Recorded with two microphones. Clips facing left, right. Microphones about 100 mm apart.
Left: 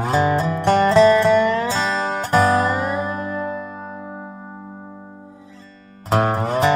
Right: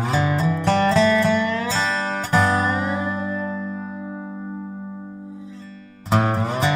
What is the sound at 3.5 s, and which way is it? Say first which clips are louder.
Music: right 1 dB; 60° left (ahead or behind).